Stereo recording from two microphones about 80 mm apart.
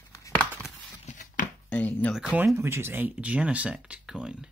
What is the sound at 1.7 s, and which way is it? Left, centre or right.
Guitar, centre.